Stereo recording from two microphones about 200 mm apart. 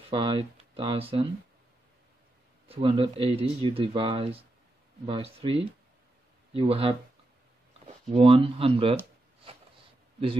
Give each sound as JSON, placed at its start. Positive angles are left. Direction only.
{"t": 0.1, "sound": "speech", "side_deg": -25}
{"t": 2.7, "sound": "speech", "side_deg": -25}
{"t": 8.1, "sound": "speech", "side_deg": -30}